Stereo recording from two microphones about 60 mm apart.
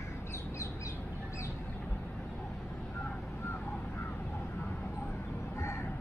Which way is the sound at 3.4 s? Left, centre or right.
Left.